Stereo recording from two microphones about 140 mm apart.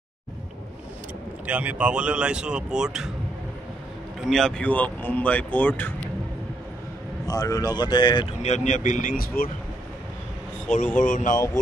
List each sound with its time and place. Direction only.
1.4 s speech: 10° right (ahead or behind)
4.2 s speech: centre (ahead or behind)
7.2 s speech: 25° left (ahead or behind)
8.4 s speech: 55° left (ahead or behind); by 9.5 s 90° left
11.0 s speech: 65° left (ahead or behind)